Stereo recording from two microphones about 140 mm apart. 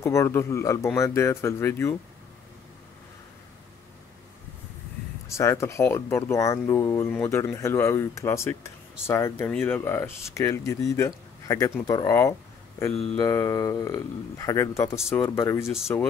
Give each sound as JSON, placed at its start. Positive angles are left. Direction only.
{"t": 0.0, "sound": "speech", "side_deg": 20}
{"t": 5.3, "sound": "speech", "side_deg": 20}